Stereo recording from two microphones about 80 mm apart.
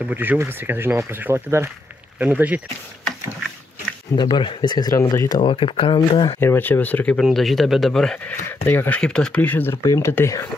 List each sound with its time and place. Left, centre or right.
0.0 s speech: right
2.1 s speech: centre
4.2 s speech: left
4.6 s speech: left
5.0 s speech: left
5.4 s speech: left
6.4 s speech: left
7.3 s speech: centre
8.3 s speech: left
9.0 s speech: centre
9.8 s speech: left